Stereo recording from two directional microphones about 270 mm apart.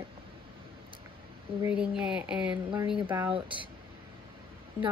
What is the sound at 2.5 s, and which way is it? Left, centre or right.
Speech, centre.